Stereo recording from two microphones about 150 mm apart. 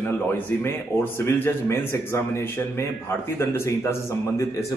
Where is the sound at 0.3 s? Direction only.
15° left (ahead or behind).